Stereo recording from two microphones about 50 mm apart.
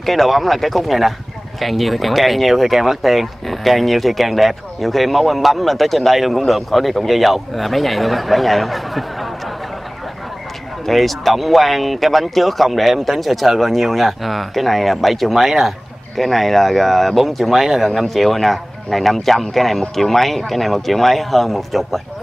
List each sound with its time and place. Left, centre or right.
0.0 s speech: centre
10.9 s speech: centre